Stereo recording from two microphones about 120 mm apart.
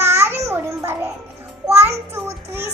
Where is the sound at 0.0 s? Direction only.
20° right (ahead or behind).